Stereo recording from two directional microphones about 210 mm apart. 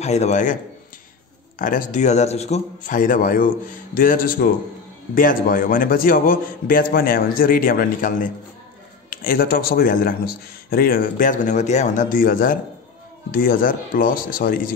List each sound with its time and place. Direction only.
0.0 s speech: 30° left (ahead or behind)
1.6 s a man's voice: 40° left (ahead or behind)